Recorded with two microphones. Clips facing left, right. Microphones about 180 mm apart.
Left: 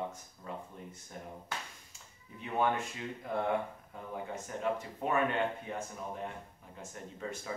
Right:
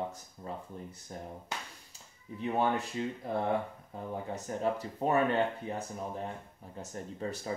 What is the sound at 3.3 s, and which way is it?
Speech, 30° right (ahead or behind).